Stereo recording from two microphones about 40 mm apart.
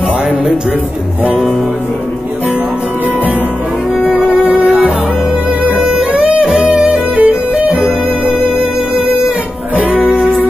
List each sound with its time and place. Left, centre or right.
5.8 s music: right
9.8 s music: right